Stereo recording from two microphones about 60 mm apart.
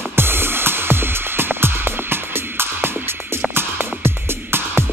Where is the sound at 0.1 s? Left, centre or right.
Right.